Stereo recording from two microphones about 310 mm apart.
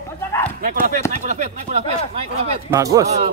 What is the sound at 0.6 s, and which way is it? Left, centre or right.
A man's voice, right.